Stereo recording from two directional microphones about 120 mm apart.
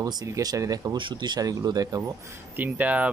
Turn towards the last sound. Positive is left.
turn(degrees=-10)  # may be behind; listen again after turning